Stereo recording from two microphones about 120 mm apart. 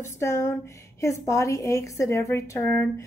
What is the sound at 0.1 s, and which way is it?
A woman's voice, 25° left (ahead or behind).